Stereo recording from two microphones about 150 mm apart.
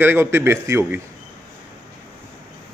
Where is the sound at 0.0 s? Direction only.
15° right (ahead or behind).